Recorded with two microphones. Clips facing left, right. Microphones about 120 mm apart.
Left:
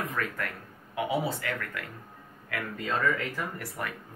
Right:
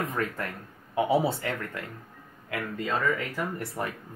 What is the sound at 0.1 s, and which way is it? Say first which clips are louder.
Speech: right 2 dB; 30° right (ahead or behind).